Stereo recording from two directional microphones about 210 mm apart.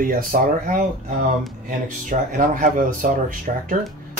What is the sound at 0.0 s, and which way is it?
Speech, 40° right (ahead or behind).